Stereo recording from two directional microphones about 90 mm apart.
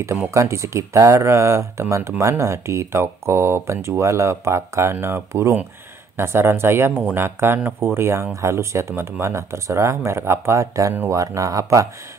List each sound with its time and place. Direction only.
0.3 s speech: 35° right (ahead or behind)